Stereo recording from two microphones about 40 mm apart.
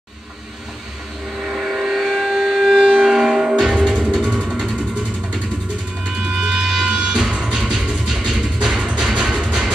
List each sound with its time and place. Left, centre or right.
1.4 s vehicle: centre
3.7 s music: right
4.3 s a sound: right
6.1 s music: centre